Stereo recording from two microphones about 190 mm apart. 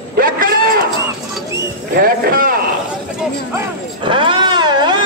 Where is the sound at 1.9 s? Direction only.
50° right (ahead or behind).